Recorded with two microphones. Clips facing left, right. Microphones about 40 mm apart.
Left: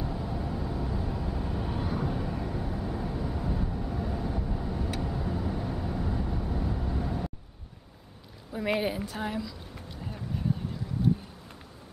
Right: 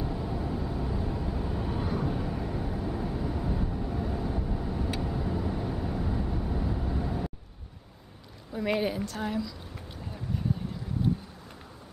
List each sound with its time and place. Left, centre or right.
0.0 s vehicle: centre
8.5 s a woman's voice: centre